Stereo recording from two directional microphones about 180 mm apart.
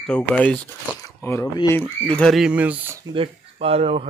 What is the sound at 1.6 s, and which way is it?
Speech, 15° left (ahead or behind).